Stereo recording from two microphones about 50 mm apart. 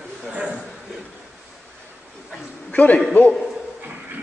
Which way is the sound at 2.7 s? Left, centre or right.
Left.